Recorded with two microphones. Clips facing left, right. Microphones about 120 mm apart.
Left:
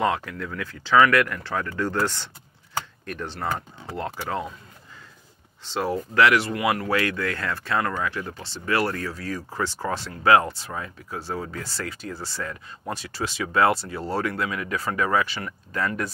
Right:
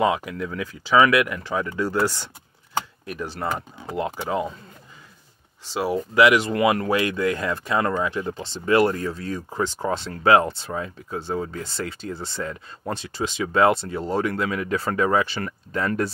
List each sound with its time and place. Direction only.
0.0 s speech: 15° right (ahead or behind)
5.7 s speech: 10° right (ahead or behind)
14.5 s speech: 30° right (ahead or behind)